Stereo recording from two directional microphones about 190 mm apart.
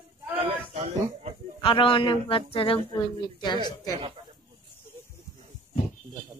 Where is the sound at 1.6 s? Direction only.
25° left (ahead or behind).